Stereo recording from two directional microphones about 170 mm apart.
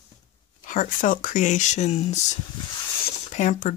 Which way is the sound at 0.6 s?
50° left (ahead or behind).